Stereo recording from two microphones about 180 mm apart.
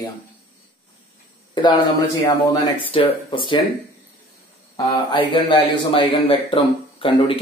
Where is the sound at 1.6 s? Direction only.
25° left (ahead or behind).